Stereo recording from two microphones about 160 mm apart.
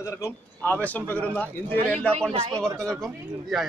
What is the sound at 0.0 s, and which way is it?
Speech, 20° left (ahead or behind).